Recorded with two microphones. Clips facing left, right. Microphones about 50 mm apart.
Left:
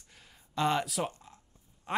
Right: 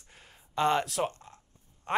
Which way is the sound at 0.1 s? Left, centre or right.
Centre.